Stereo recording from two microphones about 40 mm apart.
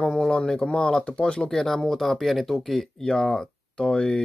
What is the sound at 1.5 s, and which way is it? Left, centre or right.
Speech, centre.